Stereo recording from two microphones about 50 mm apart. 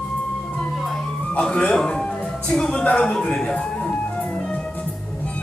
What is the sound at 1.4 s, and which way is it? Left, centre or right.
A man's voice, centre.